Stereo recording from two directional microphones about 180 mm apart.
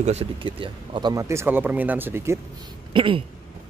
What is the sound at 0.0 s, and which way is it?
Speech, 35° right (ahead or behind).